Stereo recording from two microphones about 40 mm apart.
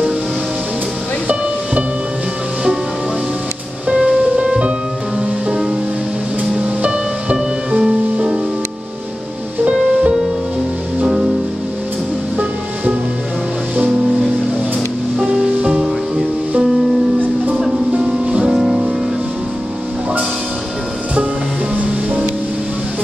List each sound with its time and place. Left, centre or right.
3.8 s music: right
6.6 s music: right
17.9 s music: right
18.5 s music: centre